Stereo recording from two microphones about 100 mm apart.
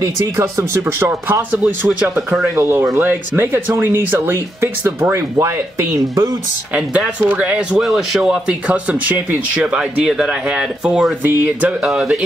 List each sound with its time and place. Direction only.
0.4 s speech: 25° right (ahead or behind)
2.0 s speech: 15° right (ahead or behind)
2.5 s speech: 25° right (ahead or behind)
6.7 s speech: 15° right (ahead or behind)